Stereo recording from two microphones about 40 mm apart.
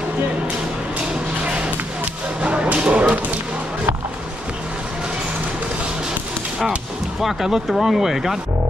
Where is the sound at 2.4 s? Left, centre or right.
Right.